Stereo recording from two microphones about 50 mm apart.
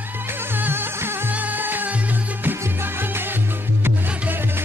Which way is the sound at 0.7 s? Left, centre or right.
Right.